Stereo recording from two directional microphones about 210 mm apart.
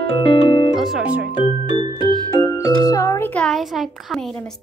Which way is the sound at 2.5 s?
15° left (ahead or behind).